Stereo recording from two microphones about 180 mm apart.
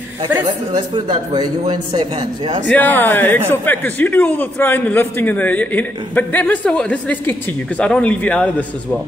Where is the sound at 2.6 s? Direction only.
10° left (ahead or behind).